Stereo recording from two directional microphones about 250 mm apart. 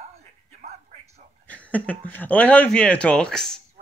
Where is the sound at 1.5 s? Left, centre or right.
Centre.